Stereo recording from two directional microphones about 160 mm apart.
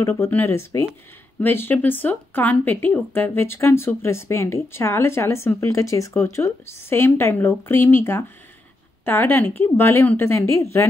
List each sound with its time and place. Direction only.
0.0 s speech: 15° left (ahead or behind)